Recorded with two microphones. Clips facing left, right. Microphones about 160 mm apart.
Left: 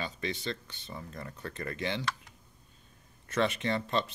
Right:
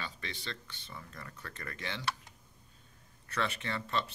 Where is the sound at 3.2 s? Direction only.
20° left (ahead or behind).